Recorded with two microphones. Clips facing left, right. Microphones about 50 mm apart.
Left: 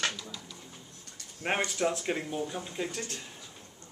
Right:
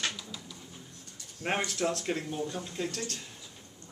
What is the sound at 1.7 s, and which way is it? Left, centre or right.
Speech, centre.